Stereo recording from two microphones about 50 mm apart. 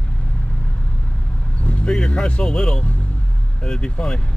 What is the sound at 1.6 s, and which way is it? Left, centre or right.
Vehicle, left.